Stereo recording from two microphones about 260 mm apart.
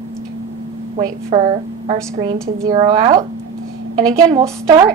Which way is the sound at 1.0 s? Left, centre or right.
Right.